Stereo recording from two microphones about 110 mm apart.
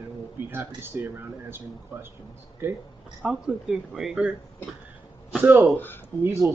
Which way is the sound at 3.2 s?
5° right (ahead or behind).